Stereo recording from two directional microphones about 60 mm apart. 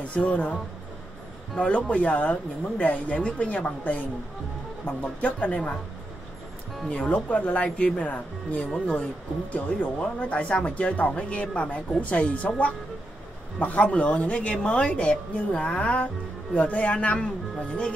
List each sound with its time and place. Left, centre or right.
0.0 s a woman's voice: left
1.6 s a woman's voice: left
6.9 s a woman's voice: left